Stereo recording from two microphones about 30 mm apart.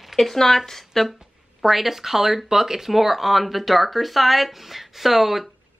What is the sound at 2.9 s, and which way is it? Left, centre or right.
Speech, centre.